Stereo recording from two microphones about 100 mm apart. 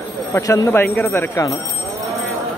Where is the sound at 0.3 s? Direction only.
25° left (ahead or behind).